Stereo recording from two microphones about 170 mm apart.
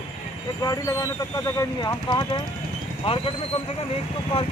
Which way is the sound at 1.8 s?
25° left (ahead or behind).